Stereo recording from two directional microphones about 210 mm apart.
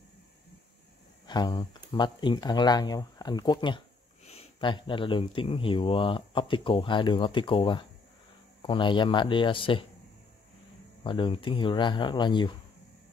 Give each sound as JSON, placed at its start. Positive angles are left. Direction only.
{"t": 1.2, "sound": "speech", "side_deg": 20}
{"t": 11.1, "sound": "speech", "side_deg": 25}